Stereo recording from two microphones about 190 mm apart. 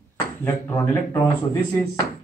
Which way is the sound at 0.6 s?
20° left (ahead or behind).